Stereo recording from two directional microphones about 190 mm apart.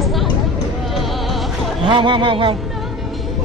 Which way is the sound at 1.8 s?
25° right (ahead or behind).